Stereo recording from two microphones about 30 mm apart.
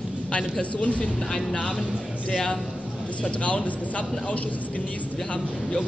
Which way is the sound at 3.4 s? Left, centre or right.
Left.